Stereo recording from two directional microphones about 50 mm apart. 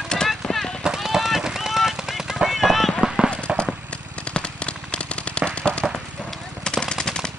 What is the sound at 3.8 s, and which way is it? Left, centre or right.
Machine gun, left.